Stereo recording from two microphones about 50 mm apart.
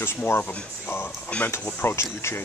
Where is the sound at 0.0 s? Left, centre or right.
Left.